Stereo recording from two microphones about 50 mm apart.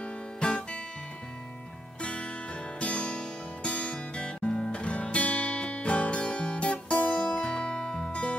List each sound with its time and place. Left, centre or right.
0.0 s guitar: left
2.0 s music: left